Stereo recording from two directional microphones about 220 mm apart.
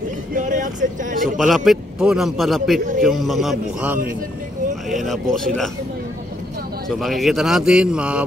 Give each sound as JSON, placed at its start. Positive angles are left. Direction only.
{"t": 0.3, "sound": "speech", "side_deg": -35}
{"t": 1.4, "sound": "a man's voice", "side_deg": 0}
{"t": 6.9, "sound": "a man's voice", "side_deg": 0}